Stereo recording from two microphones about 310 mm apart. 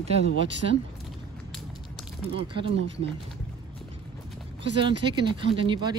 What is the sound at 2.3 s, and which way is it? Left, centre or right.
Speech, centre.